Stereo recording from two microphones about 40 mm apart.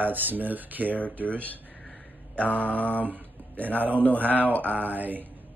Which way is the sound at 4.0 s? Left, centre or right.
Left.